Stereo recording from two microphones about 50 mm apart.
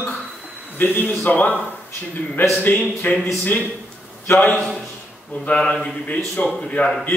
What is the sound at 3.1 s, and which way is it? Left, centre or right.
Speech, left.